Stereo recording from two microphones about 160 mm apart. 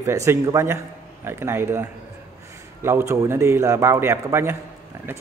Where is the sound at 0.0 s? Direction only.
20° right (ahead or behind).